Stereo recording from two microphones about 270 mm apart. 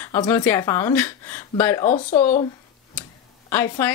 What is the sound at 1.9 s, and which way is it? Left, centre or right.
Speech, left.